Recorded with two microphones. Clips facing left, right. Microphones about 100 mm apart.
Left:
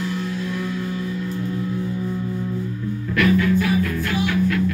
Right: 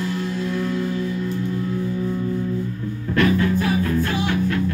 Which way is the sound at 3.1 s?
30° right (ahead or behind).